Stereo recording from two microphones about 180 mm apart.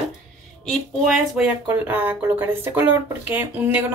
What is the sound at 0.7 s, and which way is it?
Speech, centre (ahead or behind).